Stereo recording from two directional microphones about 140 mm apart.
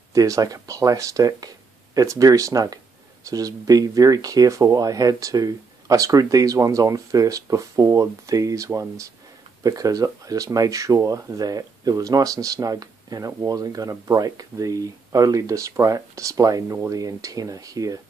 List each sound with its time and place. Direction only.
0.1 s speech: 25° right (ahead or behind)